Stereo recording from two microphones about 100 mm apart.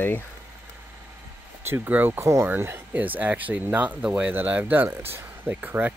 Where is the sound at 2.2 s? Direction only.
30° right (ahead or behind).